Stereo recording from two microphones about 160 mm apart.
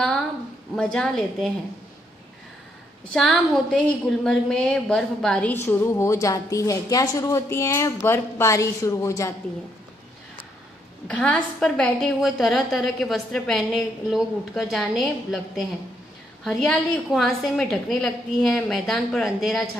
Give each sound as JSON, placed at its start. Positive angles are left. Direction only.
{"t": 0.7, "sound": "a woman's voice", "side_deg": 5}
{"t": 3.1, "sound": "a woman's voice", "side_deg": 5}
{"t": 11.1, "sound": "a woman's voice", "side_deg": 5}